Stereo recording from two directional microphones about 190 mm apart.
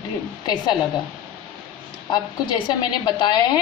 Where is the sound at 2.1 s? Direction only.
25° left (ahead or behind).